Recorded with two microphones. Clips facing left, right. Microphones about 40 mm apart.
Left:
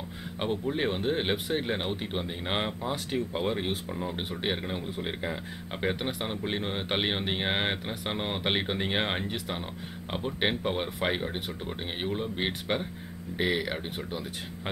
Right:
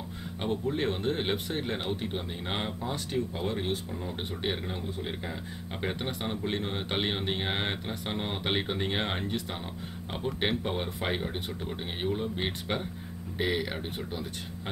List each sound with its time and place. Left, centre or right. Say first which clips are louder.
0.4 s speech: left 1 dB; centre
13.8 s speech: left 1 dB; centre